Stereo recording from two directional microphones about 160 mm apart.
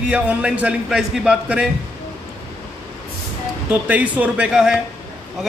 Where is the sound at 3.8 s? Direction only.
10° right (ahead or behind).